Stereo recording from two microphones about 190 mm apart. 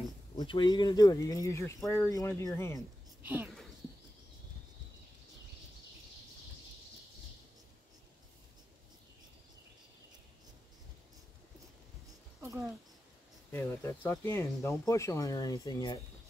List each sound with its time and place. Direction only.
0.4 s speech: 25° left (ahead or behind)
3.2 s speech: 10° right (ahead or behind)
12.4 s a sound: 15° right (ahead or behind)
13.5 s speech: 10° left (ahead or behind)